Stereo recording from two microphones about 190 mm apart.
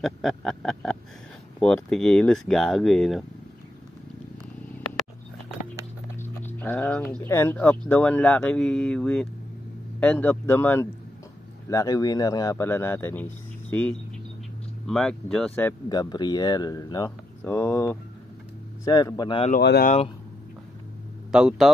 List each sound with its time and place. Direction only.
0.0 s speech: centre (ahead or behind)
6.1 s speech: 10° left (ahead or behind)
15.9 s speech: 20° left (ahead or behind)
19.6 s speech: 60° left (ahead or behind)
21.3 s speech: 5° right (ahead or behind)